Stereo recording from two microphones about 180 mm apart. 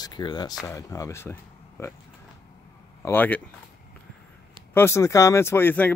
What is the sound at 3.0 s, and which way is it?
Speech, 10° left (ahead or behind).